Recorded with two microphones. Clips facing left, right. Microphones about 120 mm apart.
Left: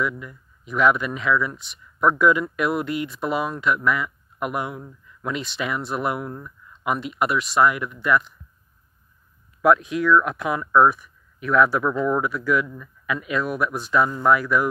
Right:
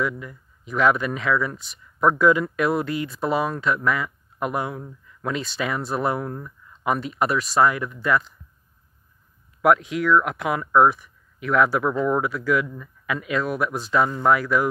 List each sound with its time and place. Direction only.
0.7 s speech: 35° right (ahead or behind)
9.6 s speech: 25° right (ahead or behind)